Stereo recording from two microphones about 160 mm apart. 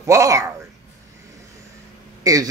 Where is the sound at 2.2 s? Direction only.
20° right (ahead or behind).